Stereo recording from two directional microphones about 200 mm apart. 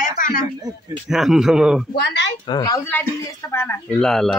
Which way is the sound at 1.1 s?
Centre (ahead or behind).